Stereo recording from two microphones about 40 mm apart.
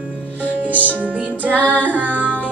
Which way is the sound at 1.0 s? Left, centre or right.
Right.